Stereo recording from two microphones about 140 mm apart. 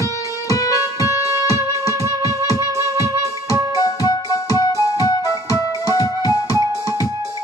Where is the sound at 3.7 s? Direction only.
25° left (ahead or behind).